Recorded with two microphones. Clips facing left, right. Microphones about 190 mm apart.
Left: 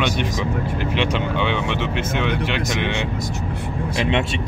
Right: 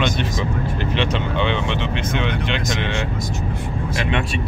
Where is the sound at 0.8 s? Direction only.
10° left (ahead or behind).